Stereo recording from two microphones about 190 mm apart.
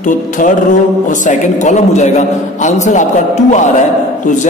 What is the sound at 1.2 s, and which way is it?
Speech, 40° left (ahead or behind).